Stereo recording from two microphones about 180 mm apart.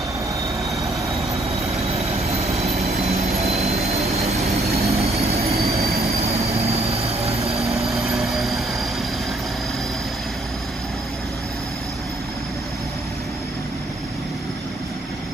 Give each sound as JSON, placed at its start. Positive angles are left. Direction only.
{"t": 1.9, "sound": "vehicle", "side_deg": -35}
{"t": 4.8, "sound": "train", "side_deg": -35}
{"t": 6.0, "sound": "vehicle", "side_deg": -35}
{"t": 7.7, "sound": "train", "side_deg": 0}